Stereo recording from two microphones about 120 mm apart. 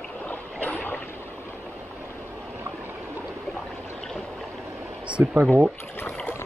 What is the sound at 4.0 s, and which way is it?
Stream, 5° left (ahead or behind).